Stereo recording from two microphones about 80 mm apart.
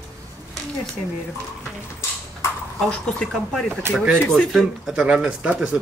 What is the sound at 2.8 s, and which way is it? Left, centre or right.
A man's voice, centre.